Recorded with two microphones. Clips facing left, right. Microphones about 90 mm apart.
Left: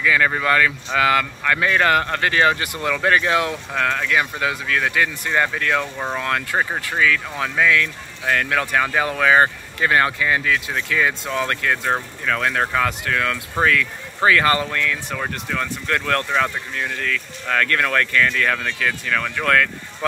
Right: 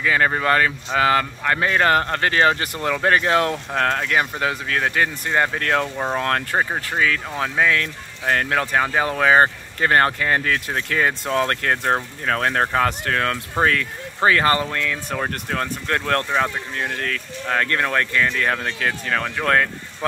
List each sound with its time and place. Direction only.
0.0 s speech: 35° right (ahead or behind)
17.5 s speech: 25° right (ahead or behind)